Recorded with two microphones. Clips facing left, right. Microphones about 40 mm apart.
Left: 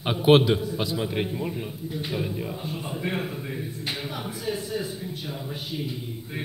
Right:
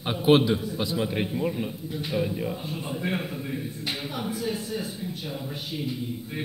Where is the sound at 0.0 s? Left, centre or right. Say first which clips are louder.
Left 2 dB; centre.